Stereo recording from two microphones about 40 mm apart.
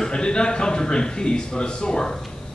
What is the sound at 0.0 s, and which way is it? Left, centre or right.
Speech, left.